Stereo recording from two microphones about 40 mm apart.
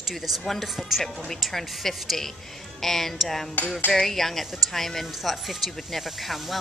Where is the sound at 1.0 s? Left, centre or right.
Centre.